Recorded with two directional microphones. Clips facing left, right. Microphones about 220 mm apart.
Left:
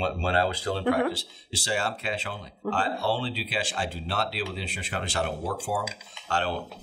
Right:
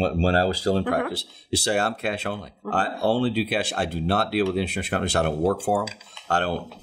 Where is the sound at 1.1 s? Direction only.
65° right (ahead or behind).